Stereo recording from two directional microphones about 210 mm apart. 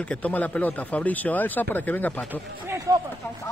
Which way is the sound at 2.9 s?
15° right (ahead or behind).